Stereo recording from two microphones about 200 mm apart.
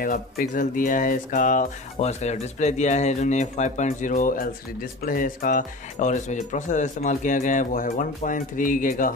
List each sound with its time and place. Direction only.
0.0 s speech: 45° left (ahead or behind)